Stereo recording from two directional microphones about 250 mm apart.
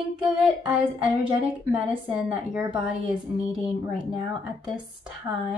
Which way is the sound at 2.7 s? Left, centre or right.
Centre.